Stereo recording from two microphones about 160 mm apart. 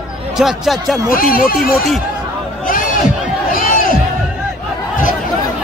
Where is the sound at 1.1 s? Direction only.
60° left (ahead or behind).